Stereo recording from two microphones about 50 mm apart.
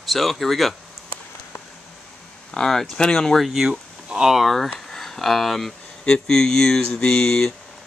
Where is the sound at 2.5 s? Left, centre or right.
Centre.